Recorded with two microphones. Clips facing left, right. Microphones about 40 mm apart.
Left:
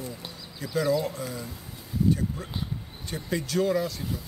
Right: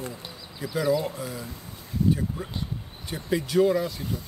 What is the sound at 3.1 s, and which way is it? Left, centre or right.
Speech, centre.